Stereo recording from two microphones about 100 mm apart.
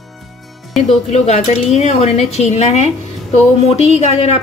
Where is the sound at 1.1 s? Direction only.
90° left.